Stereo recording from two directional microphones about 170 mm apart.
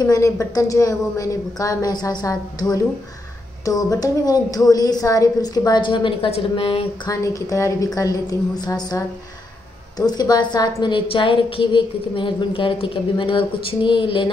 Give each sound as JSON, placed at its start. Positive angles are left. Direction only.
{"t": 0.0, "sound": "a woman's voice", "side_deg": 20}
{"t": 7.1, "sound": "a woman's voice", "side_deg": 20}